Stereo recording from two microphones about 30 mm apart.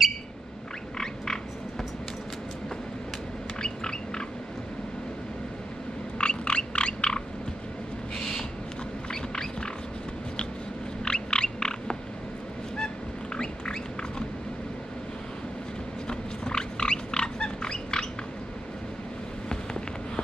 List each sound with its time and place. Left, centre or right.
0.9 s frog: left
3.6 s a sound: left
6.1 s frog: left
9.1 s a sound: left
11.1 s frog: left
13.4 s roaring cats: left
16.1 s pig: left